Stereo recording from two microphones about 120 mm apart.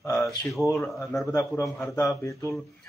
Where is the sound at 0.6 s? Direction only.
25° left (ahead or behind).